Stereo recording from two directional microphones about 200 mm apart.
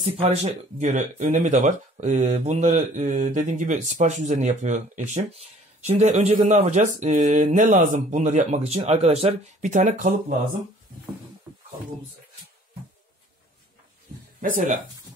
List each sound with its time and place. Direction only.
0.0 s speech: 30° right (ahead or behind)